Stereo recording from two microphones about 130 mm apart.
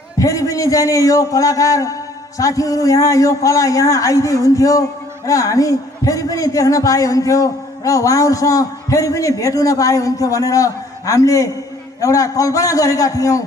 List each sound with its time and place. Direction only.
0.2 s a man's voice: 25° left (ahead or behind)